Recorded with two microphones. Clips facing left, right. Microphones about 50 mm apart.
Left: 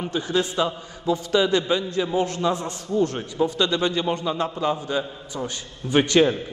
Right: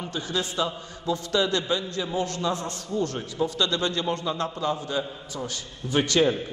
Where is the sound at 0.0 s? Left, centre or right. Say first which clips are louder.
Left 6 dB; centre.